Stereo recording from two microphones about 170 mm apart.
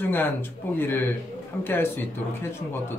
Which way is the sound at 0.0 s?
10° left (ahead or behind).